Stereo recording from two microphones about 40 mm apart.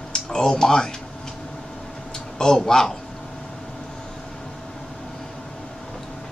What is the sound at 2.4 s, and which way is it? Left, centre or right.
Speech, centre.